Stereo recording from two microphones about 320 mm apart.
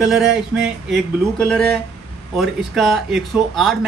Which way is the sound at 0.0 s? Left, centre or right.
Centre.